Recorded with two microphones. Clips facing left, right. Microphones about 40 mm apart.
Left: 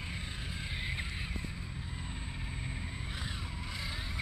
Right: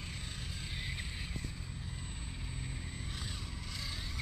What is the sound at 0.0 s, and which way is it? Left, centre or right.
Vehicle, left.